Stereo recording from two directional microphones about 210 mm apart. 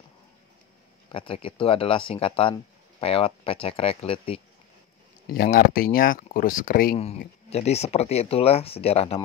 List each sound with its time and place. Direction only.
1.1 s speech: 25° left (ahead or behind)
5.2 s speech: 45° left (ahead or behind)
7.0 s speech: 30° left (ahead or behind)